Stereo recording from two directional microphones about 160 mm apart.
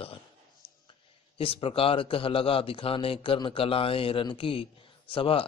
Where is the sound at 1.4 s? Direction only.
35° left (ahead or behind).